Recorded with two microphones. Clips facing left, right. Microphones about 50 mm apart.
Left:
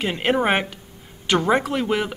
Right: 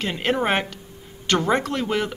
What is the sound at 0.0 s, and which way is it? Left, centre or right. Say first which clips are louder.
Speech: left 2 dB; centre.